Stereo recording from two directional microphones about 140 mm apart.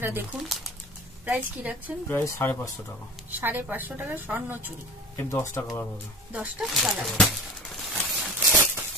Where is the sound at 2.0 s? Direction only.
15° left (ahead or behind).